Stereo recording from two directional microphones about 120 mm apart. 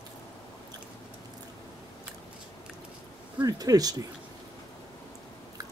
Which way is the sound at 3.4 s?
30° right (ahead or behind).